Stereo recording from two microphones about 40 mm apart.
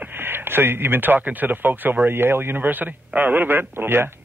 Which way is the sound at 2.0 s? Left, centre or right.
Right.